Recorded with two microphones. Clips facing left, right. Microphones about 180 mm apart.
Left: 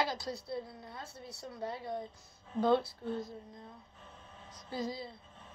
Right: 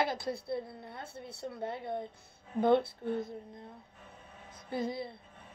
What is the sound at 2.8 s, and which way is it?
Speech, 55° right (ahead or behind).